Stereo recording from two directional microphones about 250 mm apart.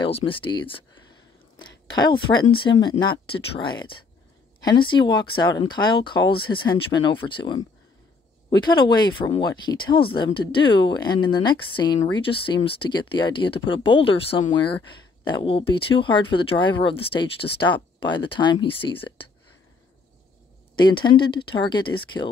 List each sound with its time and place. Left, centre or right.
0.0 s speech: left
20.9 s speech: centre